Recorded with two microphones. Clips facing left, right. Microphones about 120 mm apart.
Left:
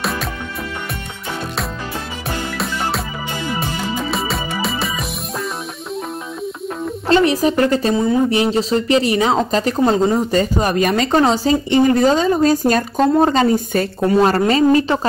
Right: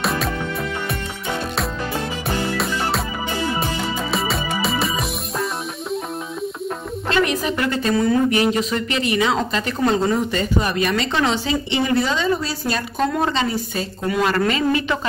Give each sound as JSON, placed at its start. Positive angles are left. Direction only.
{"t": 0.0, "sound": "music", "side_deg": 0}
{"t": 2.2, "sound": "music", "side_deg": 0}
{"t": 4.1, "sound": "music", "side_deg": 0}
{"t": 7.1, "sound": "a woman's voice", "side_deg": 35}
{"t": 7.9, "sound": "speech", "side_deg": 20}
{"t": 8.3, "sound": "a woman's voice", "side_deg": 30}